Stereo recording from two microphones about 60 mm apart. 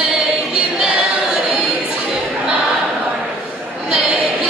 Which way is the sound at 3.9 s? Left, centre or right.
Centre.